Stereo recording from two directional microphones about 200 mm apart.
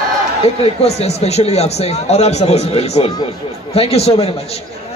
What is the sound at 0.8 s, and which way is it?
A man's voice, 30° left (ahead or behind).